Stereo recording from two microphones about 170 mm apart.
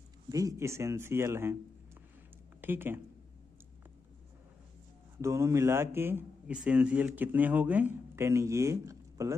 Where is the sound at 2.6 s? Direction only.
10° right (ahead or behind).